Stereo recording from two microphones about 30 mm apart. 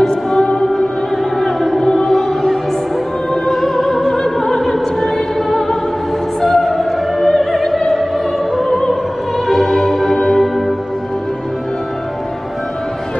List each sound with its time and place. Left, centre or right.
0.0 s music: centre
3.4 s opera: centre
9.7 s music: centre